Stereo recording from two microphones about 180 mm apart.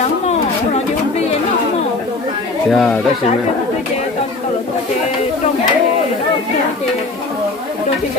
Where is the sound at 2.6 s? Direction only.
Centre (ahead or behind).